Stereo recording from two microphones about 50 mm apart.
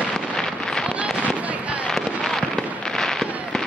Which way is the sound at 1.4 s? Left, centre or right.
Right.